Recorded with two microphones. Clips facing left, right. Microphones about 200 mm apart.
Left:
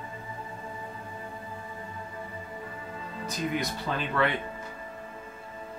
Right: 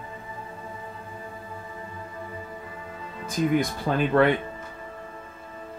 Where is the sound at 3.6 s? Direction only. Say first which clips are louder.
Right 7 dB; 50° right (ahead or behind).